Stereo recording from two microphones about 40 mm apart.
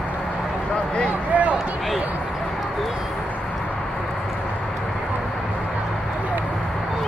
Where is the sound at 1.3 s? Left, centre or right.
Right.